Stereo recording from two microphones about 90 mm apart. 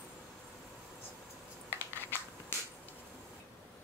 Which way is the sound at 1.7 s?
25° left (ahead or behind).